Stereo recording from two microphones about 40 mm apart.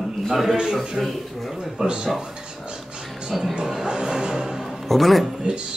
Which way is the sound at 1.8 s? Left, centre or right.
Centre.